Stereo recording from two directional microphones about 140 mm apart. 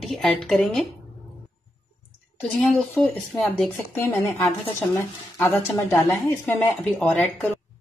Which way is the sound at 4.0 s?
20° left (ahead or behind).